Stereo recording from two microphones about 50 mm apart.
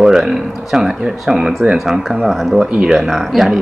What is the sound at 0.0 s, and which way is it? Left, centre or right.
A woman's voice, centre.